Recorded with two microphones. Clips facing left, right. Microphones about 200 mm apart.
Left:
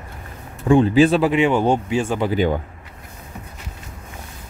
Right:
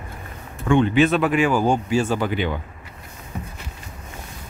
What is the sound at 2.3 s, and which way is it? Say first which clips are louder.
Speech: left 5 dB; 40° left (ahead or behind).